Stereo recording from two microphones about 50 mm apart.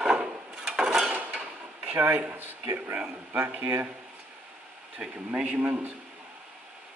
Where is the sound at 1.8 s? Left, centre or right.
Right.